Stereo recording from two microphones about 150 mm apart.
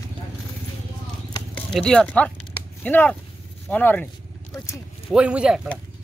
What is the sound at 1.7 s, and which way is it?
Speech, 5° left (ahead or behind).